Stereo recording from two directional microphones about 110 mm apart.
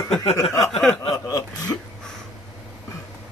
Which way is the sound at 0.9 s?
35° left (ahead or behind).